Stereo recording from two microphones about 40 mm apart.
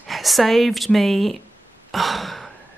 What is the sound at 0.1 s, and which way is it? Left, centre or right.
Speech, centre.